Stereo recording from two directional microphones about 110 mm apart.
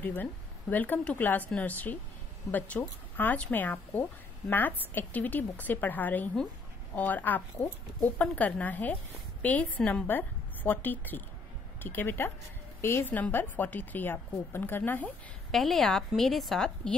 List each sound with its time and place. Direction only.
0.0 s a woman's voice: 15° left (ahead or behind)
15.5 s a woman's voice: centre (ahead or behind)